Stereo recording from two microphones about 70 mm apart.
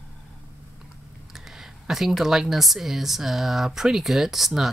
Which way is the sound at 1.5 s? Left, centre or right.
Centre.